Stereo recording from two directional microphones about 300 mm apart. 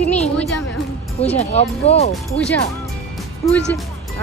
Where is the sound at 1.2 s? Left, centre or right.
Left.